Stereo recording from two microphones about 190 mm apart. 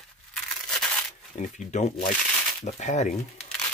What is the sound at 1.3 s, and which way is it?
Speech, 40° left (ahead or behind).